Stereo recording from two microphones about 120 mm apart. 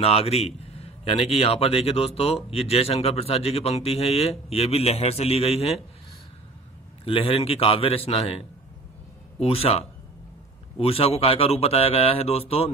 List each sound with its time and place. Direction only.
0.0 s a man's voice: 55° left (ahead or behind)
7.1 s a man's voice: 50° left (ahead or behind)